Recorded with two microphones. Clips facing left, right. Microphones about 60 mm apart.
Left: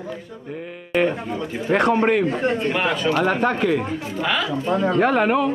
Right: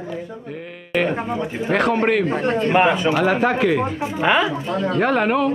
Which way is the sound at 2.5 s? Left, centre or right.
Right.